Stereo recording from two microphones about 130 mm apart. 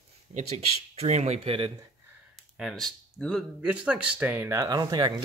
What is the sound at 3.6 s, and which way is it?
Speech, 10° right (ahead or behind).